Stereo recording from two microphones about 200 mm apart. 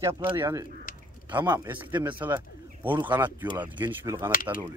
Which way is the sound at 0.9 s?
45° left (ahead or behind).